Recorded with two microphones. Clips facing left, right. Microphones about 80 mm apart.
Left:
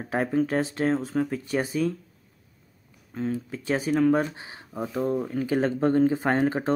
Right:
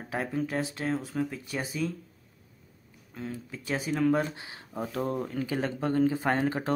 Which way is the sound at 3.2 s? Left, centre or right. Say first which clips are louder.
Left 8 dB; left.